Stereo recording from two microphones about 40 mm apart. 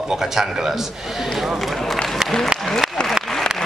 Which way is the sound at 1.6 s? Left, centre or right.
Centre.